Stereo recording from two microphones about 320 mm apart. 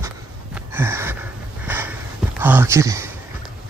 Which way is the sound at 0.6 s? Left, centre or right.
Centre.